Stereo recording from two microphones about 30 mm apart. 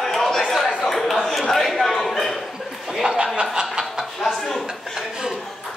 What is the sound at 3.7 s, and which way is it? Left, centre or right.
Chuckle, centre.